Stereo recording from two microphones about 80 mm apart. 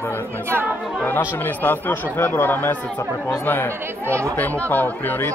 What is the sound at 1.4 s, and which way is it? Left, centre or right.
Speech, left.